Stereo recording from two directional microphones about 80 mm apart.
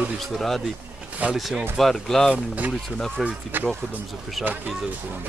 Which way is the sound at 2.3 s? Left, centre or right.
Centre.